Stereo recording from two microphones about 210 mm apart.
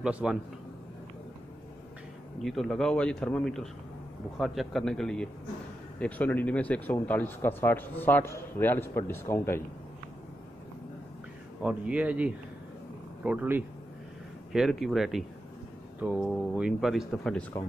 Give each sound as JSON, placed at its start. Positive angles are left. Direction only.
{"t": 0.0, "sound": "speech", "side_deg": -5}
{"t": 2.3, "sound": "speech", "side_deg": 0}
{"t": 11.6, "sound": "speech", "side_deg": -5}